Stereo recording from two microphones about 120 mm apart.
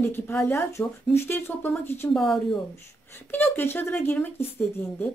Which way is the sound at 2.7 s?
20° left (ahead or behind).